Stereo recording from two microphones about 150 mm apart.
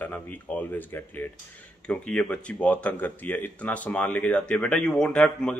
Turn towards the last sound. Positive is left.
turn(degrees=5)  # may be behind; listen again after turning